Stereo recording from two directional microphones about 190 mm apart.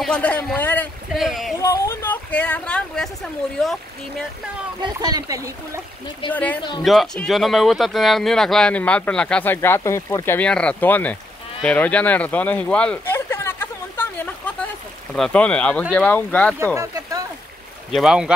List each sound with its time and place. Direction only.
0.0 s a man's voice: 5° left (ahead or behind)
1.1 s speech: centre (ahead or behind)
1.6 s speech: 15° left (ahead or behind)
4.8 s speech: 20° right (ahead or behind)
6.3 s speech: 10° left (ahead or behind)
11.6 s a sound: 5° left (ahead or behind)
15.1 s speech: 5° left (ahead or behind)
16.7 s a sound: 15° right (ahead or behind)
17.9 s speech: 5° right (ahead or behind)